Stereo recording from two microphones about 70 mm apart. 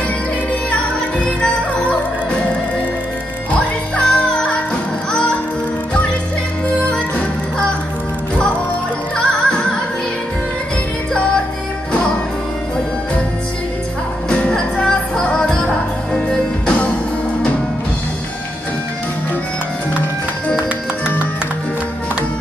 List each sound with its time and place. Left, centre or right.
1.2 s music: centre
3.5 s music: centre
9.1 s music: centre
14.3 s music: centre